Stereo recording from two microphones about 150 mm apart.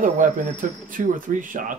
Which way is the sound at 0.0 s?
60° right (ahead or behind).